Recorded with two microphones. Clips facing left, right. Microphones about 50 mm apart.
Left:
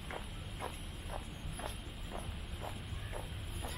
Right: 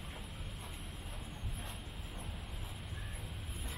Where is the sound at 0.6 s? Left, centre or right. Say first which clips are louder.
Left 4 dB; left.